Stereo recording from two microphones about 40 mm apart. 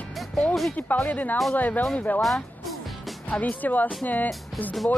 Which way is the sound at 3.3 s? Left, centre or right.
Left.